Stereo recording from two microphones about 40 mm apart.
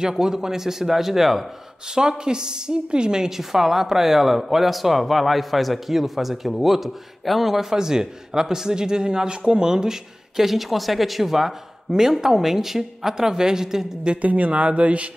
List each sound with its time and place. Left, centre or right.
0.0 s a man's voice: centre
2.0 s a woman's voice: centre
7.7 s a man's voice: centre
14.0 s speech: right